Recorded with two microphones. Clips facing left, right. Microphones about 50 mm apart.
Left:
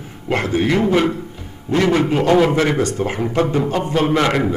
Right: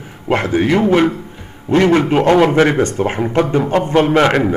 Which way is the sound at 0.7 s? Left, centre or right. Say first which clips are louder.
Right 4 dB; right.